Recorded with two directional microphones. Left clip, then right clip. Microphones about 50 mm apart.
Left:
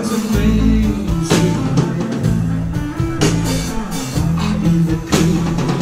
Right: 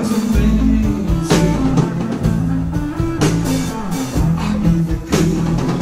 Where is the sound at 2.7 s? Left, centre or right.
Centre.